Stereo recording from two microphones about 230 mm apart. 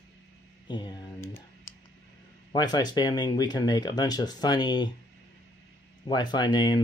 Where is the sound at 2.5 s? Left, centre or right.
Centre.